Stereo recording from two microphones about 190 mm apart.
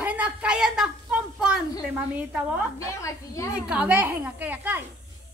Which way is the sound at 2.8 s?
15° left (ahead or behind).